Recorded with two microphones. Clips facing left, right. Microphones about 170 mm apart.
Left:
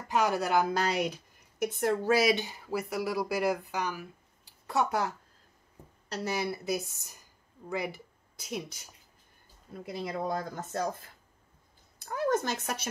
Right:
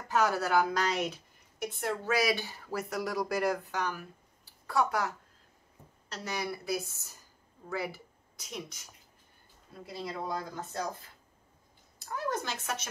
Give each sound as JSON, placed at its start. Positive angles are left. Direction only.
{"t": 0.1, "sound": "speech", "side_deg": 15}
{"t": 1.0, "sound": "speech", "side_deg": 40}
{"t": 2.0, "sound": "speech", "side_deg": 25}
{"t": 4.6, "sound": "speech", "side_deg": 25}
{"t": 8.4, "sound": "speech", "side_deg": 30}
{"t": 9.9, "sound": "speech", "side_deg": 50}
{"t": 12.0, "sound": "a sound", "side_deg": 55}